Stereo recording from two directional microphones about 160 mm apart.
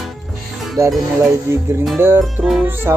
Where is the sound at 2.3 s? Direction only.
Centre (ahead or behind).